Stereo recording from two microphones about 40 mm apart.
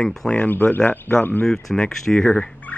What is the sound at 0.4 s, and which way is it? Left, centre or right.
Speech, left.